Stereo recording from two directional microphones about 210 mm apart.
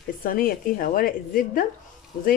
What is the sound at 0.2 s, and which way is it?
Speech, 45° left (ahead or behind).